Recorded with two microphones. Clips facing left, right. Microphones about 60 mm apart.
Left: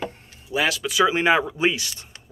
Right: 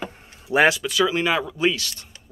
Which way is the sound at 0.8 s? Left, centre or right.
Centre.